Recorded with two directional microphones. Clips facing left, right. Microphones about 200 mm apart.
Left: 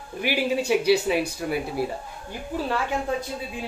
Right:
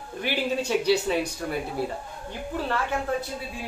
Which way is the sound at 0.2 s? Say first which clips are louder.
Left 3 dB; 10° left (ahead or behind).